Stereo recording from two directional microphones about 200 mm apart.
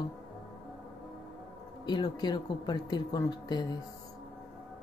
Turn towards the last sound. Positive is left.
turn(degrees=20)  # may be behind; listen again after turning